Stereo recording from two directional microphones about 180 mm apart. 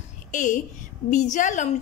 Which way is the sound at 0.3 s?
45° left (ahead or behind).